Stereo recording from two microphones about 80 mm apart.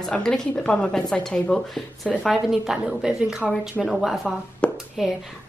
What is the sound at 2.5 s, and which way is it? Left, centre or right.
Speech, centre.